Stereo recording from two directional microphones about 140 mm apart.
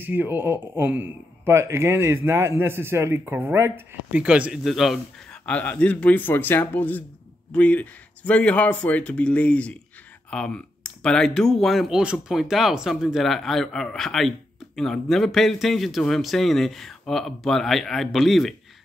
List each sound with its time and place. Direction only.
0.0 s speech: 15° right (ahead or behind)
5.5 s speech: 10° left (ahead or behind)